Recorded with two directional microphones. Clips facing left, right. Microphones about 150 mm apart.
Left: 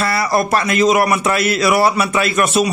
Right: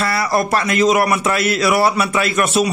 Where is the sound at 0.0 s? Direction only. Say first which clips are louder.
Left 1 dB; 25° left (ahead or behind).